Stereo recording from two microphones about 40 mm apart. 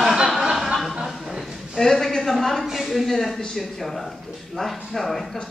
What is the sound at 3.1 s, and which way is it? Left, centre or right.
Speech, centre.